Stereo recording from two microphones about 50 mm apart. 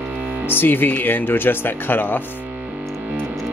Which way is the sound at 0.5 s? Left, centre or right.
Left.